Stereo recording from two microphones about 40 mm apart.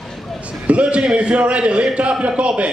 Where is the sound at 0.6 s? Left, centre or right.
Right.